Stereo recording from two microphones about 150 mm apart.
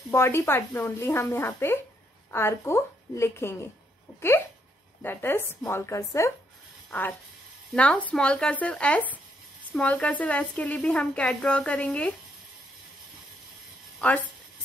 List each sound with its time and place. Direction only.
0.1 s a woman's voice: 15° left (ahead or behind)
5.0 s a woman's voice: 15° left (ahead or behind)
14.0 s a woman's voice: 10° left (ahead or behind)